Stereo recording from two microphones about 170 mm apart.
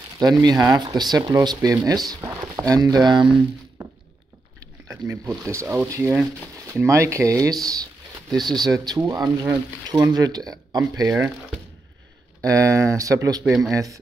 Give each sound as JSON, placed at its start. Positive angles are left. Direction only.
{"t": 0.2, "sound": "speech", "side_deg": -25}
{"t": 12.4, "sound": "speech", "side_deg": -20}